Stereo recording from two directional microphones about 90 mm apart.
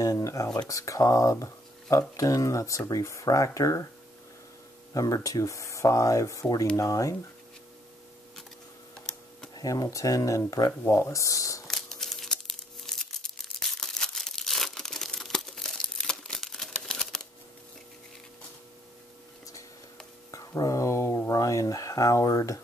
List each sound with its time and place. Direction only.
0.0 s a sound: 40° left (ahead or behind)
0.6 s speech: 35° left (ahead or behind)
4.9 s speech: 40° left (ahead or behind)
9.6 s speech: 40° left (ahead or behind)
11.6 s crumpling: 5° left (ahead or behind)
20.2 s a sound: 40° left (ahead or behind)